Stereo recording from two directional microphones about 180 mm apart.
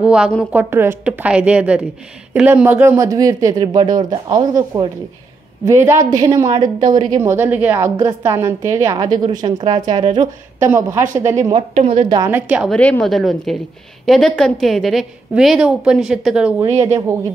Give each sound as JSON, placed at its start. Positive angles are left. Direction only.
{"t": 0.0, "sound": "a woman's voice", "side_deg": -5}
{"t": 10.6, "sound": "a woman's voice", "side_deg": -15}
{"t": 11.5, "sound": "a woman's voice", "side_deg": -35}
{"t": 12.2, "sound": "a woman's voice", "side_deg": -10}
{"t": 12.7, "sound": "a woman's voice", "side_deg": 5}